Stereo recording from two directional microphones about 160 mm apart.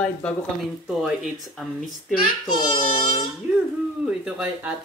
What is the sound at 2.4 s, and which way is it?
Speech, 30° left (ahead or behind).